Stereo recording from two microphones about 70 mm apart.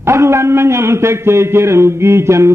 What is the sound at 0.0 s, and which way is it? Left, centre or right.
A man's voice, right.